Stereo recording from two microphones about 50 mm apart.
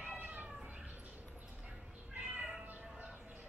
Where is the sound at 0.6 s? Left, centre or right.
Centre.